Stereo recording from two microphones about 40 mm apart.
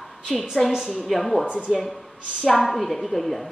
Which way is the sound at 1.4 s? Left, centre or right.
Right.